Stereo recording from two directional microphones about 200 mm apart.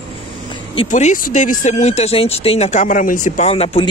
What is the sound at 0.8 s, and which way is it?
Speech, 40° left (ahead or behind).